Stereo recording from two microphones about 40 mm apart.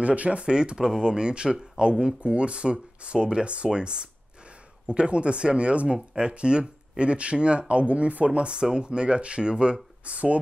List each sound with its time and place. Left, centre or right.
0.0 s speech: right
0.4 s speech: right